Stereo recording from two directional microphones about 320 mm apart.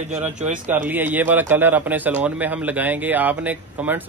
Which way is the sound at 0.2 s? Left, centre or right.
Centre.